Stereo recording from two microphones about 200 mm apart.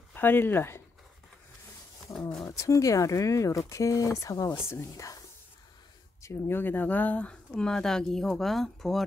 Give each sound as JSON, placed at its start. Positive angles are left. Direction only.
{"t": 0.1, "sound": "speech", "side_deg": 10}
{"t": 2.1, "sound": "speech", "side_deg": 5}
{"t": 2.4, "sound": "speech", "side_deg": 15}
{"t": 6.2, "sound": "speech", "side_deg": 10}